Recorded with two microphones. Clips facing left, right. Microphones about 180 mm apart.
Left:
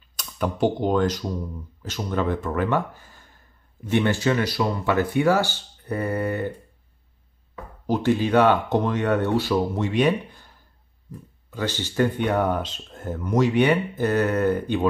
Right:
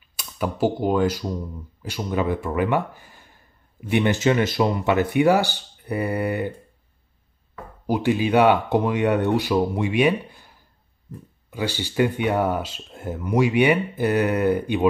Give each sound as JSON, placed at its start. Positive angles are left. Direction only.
{"t": 0.1, "sound": "speech", "side_deg": -5}
{"t": 7.8, "sound": "speech", "side_deg": -10}
{"t": 11.5, "sound": "speech", "side_deg": -10}